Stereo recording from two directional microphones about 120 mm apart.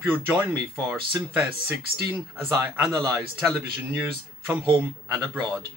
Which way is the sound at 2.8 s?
30° right (ahead or behind).